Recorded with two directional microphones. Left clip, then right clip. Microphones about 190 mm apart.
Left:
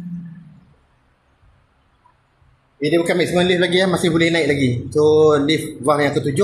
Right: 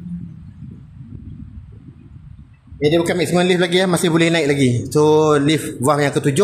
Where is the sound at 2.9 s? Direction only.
55° right (ahead or behind).